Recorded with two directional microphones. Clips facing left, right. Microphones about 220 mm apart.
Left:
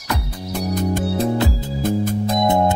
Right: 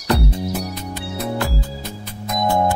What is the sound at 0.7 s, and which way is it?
Music, 50° left (ahead or behind).